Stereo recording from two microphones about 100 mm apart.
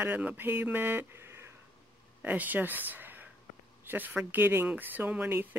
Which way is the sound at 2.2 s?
15° right (ahead or behind).